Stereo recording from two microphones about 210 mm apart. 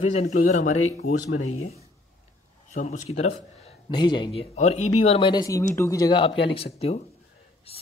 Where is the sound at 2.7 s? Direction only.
35° left (ahead or behind).